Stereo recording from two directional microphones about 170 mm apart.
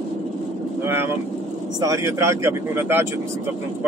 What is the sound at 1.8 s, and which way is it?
Speech, 20° right (ahead or behind).